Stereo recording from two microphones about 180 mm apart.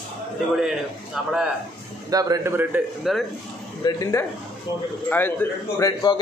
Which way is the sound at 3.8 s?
20° left (ahead or behind).